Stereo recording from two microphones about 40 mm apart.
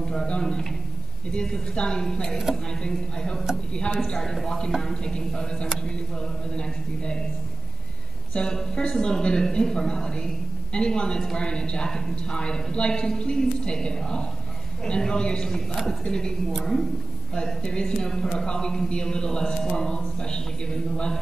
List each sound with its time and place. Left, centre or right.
0.3 s a man's voice: centre
8.3 s a man's voice: left
15.7 s a man's voice: centre
16.1 s a man's voice: centre
17.4 s a man's voice: left